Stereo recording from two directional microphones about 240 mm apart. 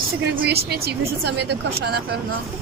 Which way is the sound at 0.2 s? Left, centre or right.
Right.